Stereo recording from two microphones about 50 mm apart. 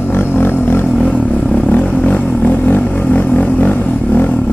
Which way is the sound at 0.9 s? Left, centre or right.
Left.